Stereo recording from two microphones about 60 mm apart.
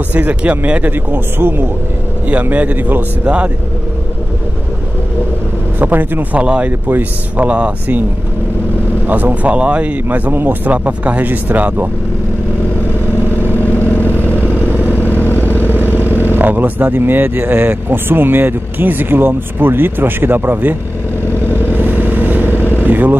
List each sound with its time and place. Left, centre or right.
0.1 s speech: right
0.9 s speech: right
5.8 s speech: right
9.0 s speech: right
10.0 s speech: right
13.4 s vehicle: left
15.5 s vehicle: right
16.9 s speech: right
21.5 s vehicle: right
22.8 s speech: right